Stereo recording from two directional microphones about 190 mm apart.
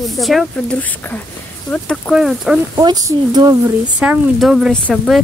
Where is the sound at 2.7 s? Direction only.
20° right (ahead or behind).